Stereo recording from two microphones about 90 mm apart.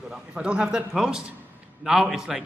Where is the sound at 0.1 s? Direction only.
10° right (ahead or behind).